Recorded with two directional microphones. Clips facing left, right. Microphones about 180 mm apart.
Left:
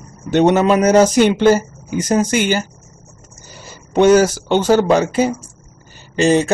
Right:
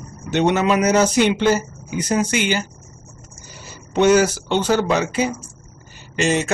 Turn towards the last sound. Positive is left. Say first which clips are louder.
# left 6 dB
turn(degrees=35)  # may be behind; listen again after turning